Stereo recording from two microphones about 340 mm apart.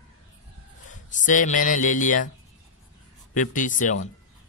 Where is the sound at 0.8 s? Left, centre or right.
Left.